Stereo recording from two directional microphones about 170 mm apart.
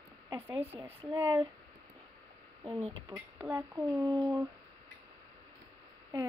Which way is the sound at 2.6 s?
30° right (ahead or behind).